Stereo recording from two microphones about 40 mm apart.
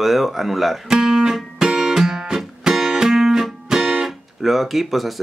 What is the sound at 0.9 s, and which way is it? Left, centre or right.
Speech, centre.